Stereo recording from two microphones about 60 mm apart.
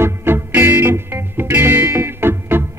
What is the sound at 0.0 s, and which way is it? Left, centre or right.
Music, right.